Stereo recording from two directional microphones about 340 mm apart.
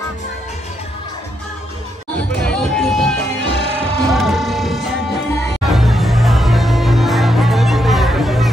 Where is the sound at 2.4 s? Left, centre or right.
Centre.